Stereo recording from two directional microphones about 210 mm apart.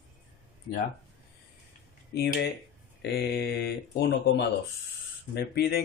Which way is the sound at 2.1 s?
50° left (ahead or behind).